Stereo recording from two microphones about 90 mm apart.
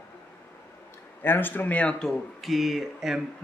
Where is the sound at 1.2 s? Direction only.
20° left (ahead or behind).